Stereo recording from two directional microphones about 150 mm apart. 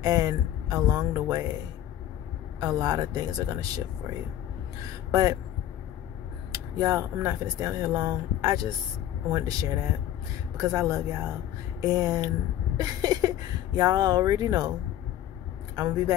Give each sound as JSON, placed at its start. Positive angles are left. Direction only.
{"t": 0.0, "sound": "speech", "side_deg": -25}
{"t": 2.6, "sound": "speech", "side_deg": -25}
{"t": 5.1, "sound": "speech", "side_deg": -25}
{"t": 6.5, "sound": "speech", "side_deg": -20}
{"t": 15.7, "sound": "speech", "side_deg": -25}